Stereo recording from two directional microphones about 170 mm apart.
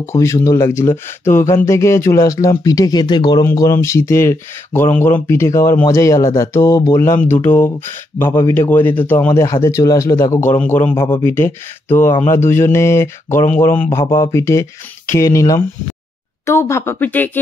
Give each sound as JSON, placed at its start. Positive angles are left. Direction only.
{"t": 0.0, "sound": "speech", "side_deg": 15}